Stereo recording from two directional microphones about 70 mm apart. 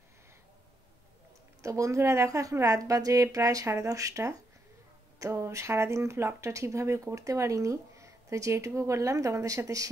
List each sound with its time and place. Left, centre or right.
1.6 s speech: right